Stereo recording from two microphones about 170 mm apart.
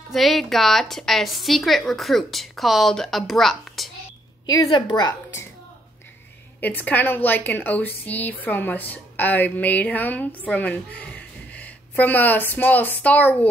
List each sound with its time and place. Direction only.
0.1 s a woman's voice: centre (ahead or behind)
4.5 s a woman's voice: 25° left (ahead or behind)
6.6 s a woman's voice: 10° left (ahead or behind)